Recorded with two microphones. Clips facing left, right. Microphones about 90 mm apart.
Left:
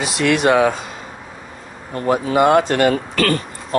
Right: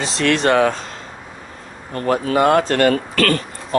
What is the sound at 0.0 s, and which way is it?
Speech, 10° left (ahead or behind).